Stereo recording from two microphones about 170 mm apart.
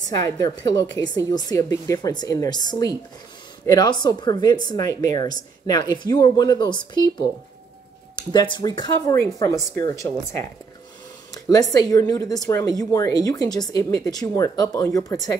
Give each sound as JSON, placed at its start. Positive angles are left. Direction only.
{"t": 0.9, "sound": "a woman's voice", "side_deg": 25}
{"t": 11.3, "sound": "a sound", "side_deg": 20}
{"t": 11.7, "sound": "speech", "side_deg": 20}